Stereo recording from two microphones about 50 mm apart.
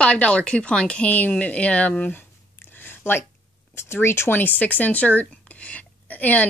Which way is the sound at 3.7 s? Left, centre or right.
Left.